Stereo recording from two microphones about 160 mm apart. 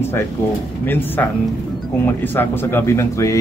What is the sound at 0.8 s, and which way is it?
Speech, 10° left (ahead or behind).